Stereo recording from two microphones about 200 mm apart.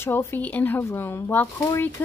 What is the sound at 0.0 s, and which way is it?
Speech, 10° left (ahead or behind).